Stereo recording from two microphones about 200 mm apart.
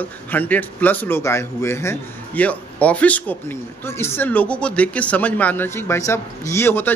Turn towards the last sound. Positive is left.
turn(degrees=10)  # may be behind; listen again after turning